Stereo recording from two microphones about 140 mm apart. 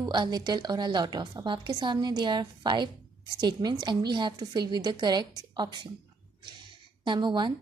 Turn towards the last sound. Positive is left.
turn(degrees=-35)  # may be behind; listen again after turning